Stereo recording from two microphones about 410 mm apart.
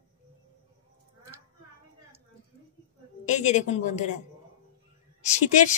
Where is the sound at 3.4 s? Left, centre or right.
Centre.